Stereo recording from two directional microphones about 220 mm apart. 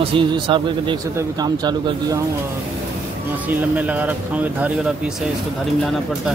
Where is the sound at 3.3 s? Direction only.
5° right (ahead or behind).